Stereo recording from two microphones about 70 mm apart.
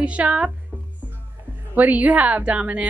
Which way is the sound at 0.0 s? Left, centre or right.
Centre.